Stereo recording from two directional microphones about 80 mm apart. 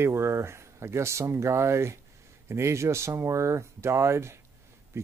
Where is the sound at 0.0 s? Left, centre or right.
Right.